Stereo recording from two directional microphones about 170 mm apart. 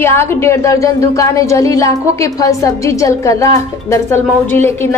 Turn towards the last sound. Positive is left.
turn(degrees=15)  # may be behind; listen again after turning